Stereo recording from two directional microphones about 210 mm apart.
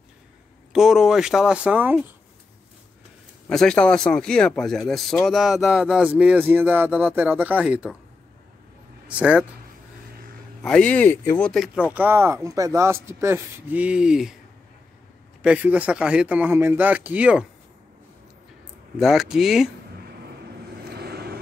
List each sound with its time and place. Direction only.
0.7 s speech: centre (ahead or behind)
3.4 s speech: 5° left (ahead or behind)
9.0 s speech: 5° right (ahead or behind)
10.6 s speech: 5° left (ahead or behind)
15.4 s speech: 5° right (ahead or behind)
18.9 s speech: centre (ahead or behind)
20.9 s vehicle: 50° right (ahead or behind)